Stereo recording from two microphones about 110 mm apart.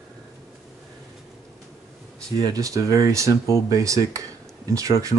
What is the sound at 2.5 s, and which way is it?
Speech, 30° right (ahead or behind).